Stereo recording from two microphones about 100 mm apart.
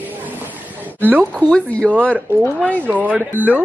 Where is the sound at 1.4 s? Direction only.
10° left (ahead or behind).